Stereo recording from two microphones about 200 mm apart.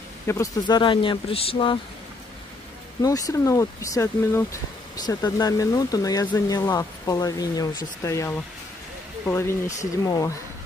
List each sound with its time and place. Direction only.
0.3 s speech: 20° left (ahead or behind)
3.0 s speech: 15° left (ahead or behind)